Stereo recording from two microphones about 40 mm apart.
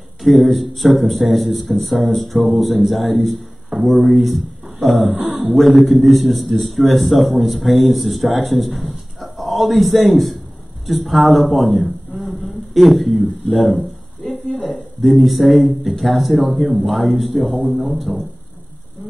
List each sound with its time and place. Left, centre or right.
0.2 s a man's voice: centre
3.7 s a sound: right
4.1 s a man's voice: centre